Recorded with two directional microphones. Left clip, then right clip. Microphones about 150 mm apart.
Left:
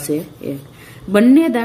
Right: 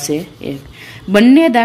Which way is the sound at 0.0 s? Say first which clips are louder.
Right 2 dB; 10° right (ahead or behind).